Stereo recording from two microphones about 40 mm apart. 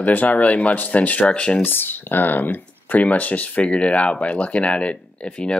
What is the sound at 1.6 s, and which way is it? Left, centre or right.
Speech, left.